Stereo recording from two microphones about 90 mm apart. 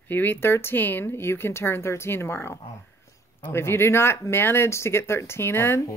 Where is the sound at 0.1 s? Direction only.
20° left (ahead or behind).